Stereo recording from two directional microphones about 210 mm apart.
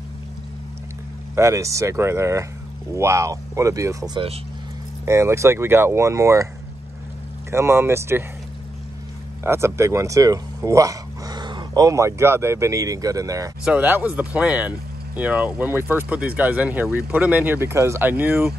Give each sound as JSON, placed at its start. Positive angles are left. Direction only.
{"t": 1.3, "sound": "speech", "side_deg": -15}
{"t": 7.5, "sound": "speech", "side_deg": -10}
{"t": 9.4, "sound": "speech", "side_deg": -10}